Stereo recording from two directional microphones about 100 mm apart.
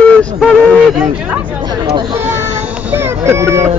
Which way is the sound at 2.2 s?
15° right (ahead or behind).